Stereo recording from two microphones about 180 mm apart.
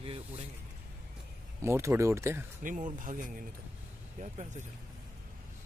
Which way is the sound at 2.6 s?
45° right (ahead or behind).